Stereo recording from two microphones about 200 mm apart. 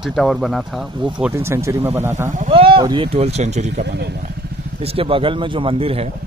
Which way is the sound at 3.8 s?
55° right (ahead or behind).